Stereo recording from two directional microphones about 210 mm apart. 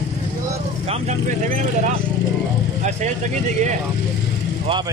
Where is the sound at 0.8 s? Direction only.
30° right (ahead or behind).